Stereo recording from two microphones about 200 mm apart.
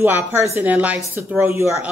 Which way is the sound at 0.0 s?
10° right (ahead or behind).